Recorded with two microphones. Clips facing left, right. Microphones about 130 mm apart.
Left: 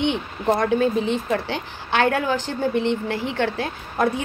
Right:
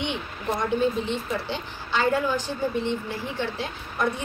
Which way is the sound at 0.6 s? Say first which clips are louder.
Left 1 dB; 80° left.